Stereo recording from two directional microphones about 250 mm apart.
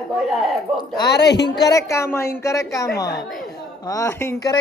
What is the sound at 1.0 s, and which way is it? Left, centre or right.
Speech, left.